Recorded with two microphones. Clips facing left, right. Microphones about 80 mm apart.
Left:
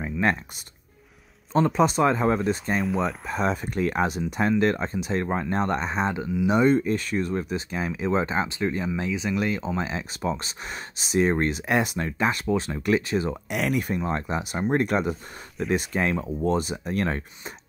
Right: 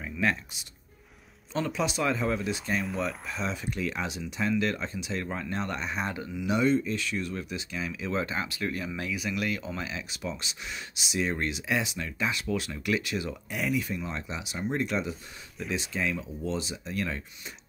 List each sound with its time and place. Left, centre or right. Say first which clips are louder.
0.0 s speech: left 4 dB; left
6.0 s speech: left 8 dB; left
6.5 s speech: left 4 dB; left
13.5 s speech: left 2 dB; left